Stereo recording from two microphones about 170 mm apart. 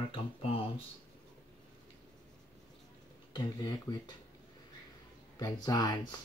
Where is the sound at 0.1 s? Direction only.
35° left (ahead or behind).